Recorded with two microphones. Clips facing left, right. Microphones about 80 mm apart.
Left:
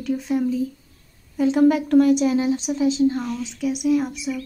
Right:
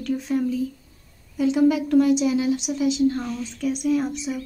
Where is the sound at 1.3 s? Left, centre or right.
Left.